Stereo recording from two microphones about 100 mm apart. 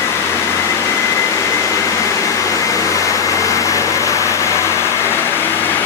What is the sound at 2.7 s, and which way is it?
Vehicle, 35° left (ahead or behind).